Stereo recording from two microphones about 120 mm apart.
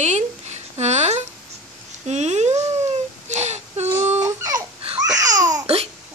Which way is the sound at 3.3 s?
70° right (ahead or behind).